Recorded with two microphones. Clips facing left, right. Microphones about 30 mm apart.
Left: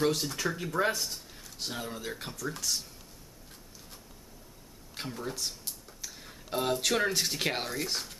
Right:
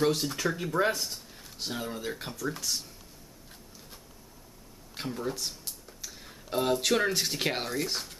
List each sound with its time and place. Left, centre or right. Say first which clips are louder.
0.0 s speech: right 2 dB; centre
4.9 s speech: right 3 dB; centre